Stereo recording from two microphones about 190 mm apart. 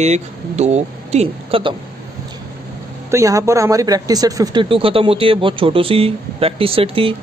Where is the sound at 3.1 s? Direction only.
15° right (ahead or behind).